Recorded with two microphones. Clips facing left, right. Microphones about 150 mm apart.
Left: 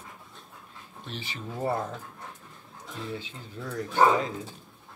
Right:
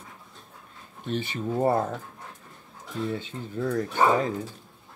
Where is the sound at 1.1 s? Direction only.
50° right (ahead or behind).